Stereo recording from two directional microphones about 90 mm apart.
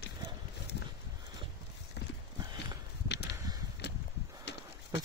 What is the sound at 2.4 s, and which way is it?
Horse, 55° right (ahead or behind).